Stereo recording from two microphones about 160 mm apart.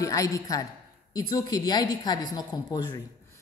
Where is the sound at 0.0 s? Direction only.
20° left (ahead or behind).